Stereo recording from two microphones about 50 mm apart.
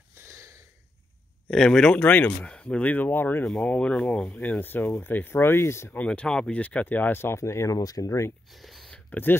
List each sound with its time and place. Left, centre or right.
0.3 s a sound: right
1.5 s speech: centre
2.0 s speech: left
3.4 s speech: left
4.6 s speech: left
6.0 s speech: centre
6.5 s speech: left
7.3 s speech: left
8.5 s a sound: centre
9.1 s speech: left